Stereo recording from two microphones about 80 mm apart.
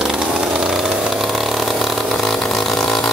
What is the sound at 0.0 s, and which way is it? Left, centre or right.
Chainsaw, centre.